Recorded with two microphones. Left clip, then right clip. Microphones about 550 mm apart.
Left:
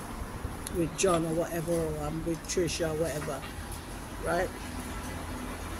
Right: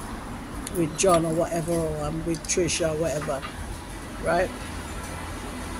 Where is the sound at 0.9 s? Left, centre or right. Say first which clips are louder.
Right 7 dB; left.